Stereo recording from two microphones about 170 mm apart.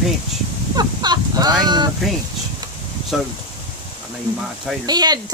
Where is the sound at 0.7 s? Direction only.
25° right (ahead or behind).